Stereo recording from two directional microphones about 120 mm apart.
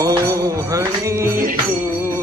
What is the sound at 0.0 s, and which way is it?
Music, 30° right (ahead or behind).